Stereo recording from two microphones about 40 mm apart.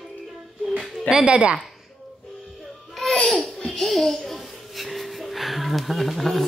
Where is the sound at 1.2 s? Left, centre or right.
Right.